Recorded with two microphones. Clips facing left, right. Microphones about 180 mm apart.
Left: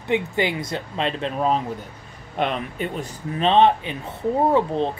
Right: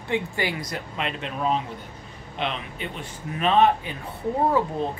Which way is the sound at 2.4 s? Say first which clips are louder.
Left 6 dB; 45° left (ahead or behind).